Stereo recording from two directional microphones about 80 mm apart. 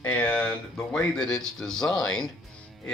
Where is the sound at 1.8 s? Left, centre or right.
Left.